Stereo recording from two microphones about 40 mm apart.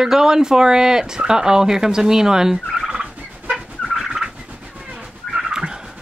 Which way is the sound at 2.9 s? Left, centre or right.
Right.